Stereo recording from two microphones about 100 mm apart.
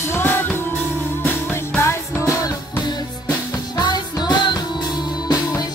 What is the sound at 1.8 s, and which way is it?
Music, 25° left (ahead or behind).